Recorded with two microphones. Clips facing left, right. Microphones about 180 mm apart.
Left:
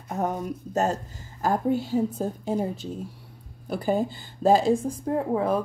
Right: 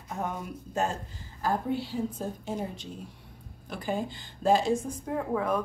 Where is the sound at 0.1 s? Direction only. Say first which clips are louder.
Left 6 dB; 40° left (ahead or behind).